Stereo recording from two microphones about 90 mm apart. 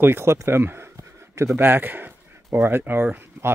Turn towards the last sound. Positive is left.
turn(degrees=-25)  # may be behind; listen again after turning